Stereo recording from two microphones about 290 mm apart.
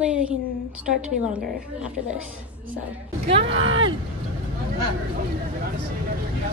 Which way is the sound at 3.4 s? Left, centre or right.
Right.